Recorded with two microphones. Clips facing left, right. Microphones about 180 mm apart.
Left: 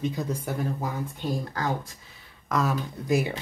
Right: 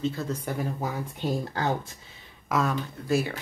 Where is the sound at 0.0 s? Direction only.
15° left (ahead or behind).